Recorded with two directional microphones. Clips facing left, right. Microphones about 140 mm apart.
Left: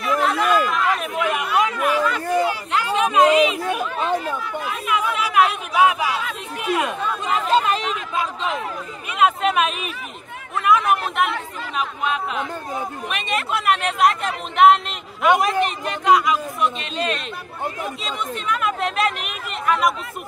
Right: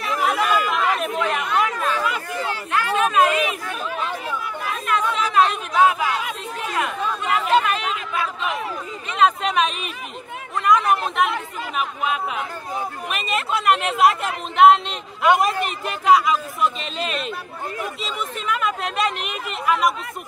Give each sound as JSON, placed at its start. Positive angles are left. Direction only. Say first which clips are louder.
{"t": 0.2, "sound": "chatter", "louder": "even", "side_deg": -5}
{"t": 1.1, "sound": "chatter", "louder": "left 1 dB", "side_deg": 10}
{"t": 2.4, "sound": "a sound", "louder": "left 2 dB", "side_deg": 15}
{"t": 4.8, "sound": "speech", "louder": "right 1 dB", "side_deg": 10}
{"t": 7.5, "sound": "speech", "louder": "left 1 dB", "side_deg": 25}
{"t": 9.1, "sound": "speech", "louder": "left 1 dB", "side_deg": 5}
{"t": 13.1, "sound": "speech", "louder": "even", "side_deg": 0}